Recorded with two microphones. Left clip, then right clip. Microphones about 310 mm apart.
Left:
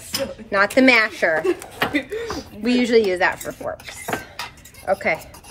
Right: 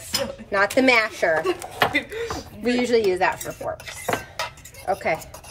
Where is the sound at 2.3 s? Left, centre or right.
Left.